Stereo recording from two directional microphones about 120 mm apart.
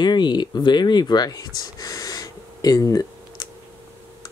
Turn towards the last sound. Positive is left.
turn(degrees=30)  # may be behind; listen again after turning